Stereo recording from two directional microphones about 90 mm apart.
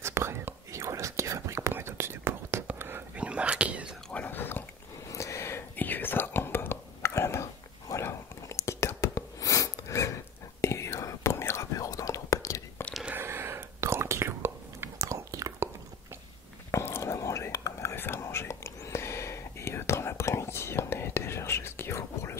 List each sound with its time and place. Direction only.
0.0 s whispering: 30° right (ahead or behind); by 3.9 s 15° right (ahead or behind)
4.1 s whispering: 20° left (ahead or behind)
5.1 s whispering: 35° left (ahead or behind)
13.0 s whispering: 25° right (ahead or behind)
16.7 s whispering: 30° left (ahead or behind)